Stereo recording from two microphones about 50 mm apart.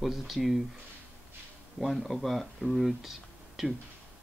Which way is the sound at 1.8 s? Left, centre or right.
Centre.